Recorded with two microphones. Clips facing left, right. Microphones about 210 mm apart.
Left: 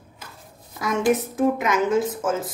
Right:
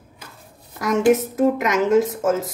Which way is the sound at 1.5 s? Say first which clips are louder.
Right 4 dB; 80° right.